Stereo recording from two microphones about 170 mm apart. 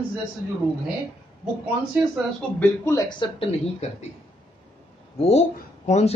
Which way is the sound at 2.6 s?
15° left (ahead or behind).